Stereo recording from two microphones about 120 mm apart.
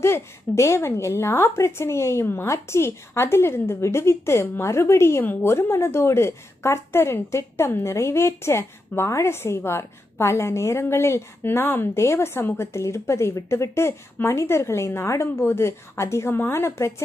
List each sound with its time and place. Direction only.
0.0 s a woman's voice: 20° left (ahead or behind)